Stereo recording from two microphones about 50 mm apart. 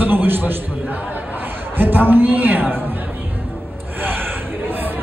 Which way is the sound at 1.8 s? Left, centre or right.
Right.